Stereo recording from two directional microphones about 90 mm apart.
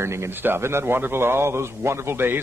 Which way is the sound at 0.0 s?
30° right (ahead or behind).